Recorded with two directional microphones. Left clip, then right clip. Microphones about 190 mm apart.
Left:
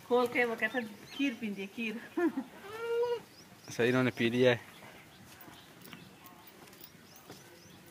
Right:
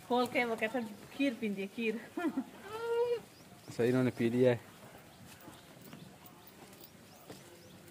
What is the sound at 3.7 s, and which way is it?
Speech, 5° right (ahead or behind).